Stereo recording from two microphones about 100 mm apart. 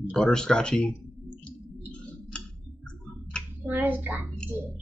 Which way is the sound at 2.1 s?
10° left (ahead or behind).